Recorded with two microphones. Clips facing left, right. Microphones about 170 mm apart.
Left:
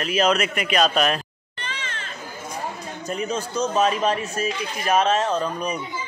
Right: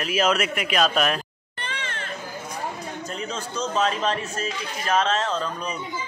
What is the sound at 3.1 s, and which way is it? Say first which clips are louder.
A man's voice: left 8 dB; 10° left (ahead or behind).